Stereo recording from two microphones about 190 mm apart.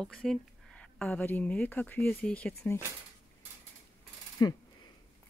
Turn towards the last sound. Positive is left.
turn(degrees=20)  # may be behind; listen again after turning